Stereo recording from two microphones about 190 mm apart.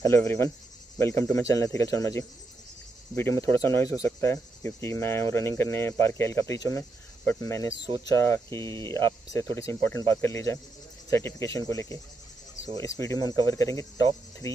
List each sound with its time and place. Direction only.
0.0 s speech: 15° left (ahead or behind)